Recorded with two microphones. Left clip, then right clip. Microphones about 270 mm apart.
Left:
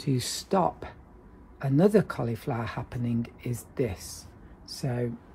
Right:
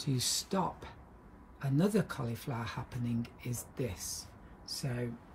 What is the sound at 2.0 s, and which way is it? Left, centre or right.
Speech, centre.